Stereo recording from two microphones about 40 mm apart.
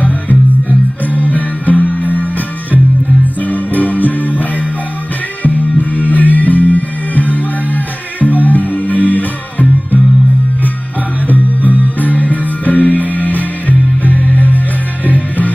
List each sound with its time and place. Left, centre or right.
0.0 s music: left
3.4 s music: left
11.2 s music: left